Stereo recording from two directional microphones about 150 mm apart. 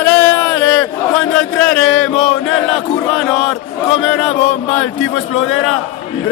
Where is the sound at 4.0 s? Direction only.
Centre (ahead or behind).